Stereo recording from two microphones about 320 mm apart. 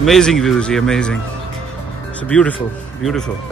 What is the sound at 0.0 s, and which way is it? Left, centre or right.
Speech, centre.